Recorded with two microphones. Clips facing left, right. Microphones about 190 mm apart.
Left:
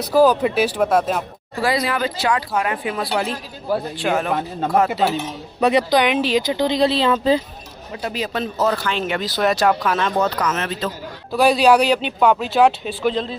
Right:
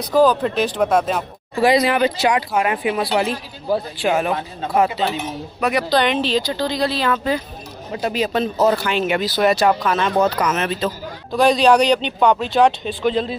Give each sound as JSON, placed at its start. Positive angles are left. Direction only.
{"t": 0.1, "sound": "speech", "side_deg": 10}
{"t": 1.6, "sound": "speech", "side_deg": -20}
{"t": 4.7, "sound": "speech", "side_deg": 0}
{"t": 5.6, "sound": "speech", "side_deg": 30}
{"t": 5.9, "sound": "speech", "side_deg": 10}
{"t": 8.0, "sound": "a man's voice", "side_deg": -20}
{"t": 8.7, "sound": "speech", "side_deg": -10}
{"t": 10.1, "sound": "speech", "side_deg": -15}
{"t": 11.3, "sound": "speech", "side_deg": 5}